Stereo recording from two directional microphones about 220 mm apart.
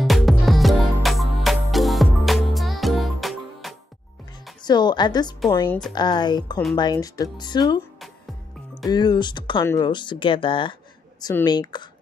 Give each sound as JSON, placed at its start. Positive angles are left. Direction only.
{"t": 0.0, "sound": "music", "side_deg": 0}
{"t": 4.6, "sound": "speech", "side_deg": 20}
{"t": 8.9, "sound": "speech", "side_deg": 20}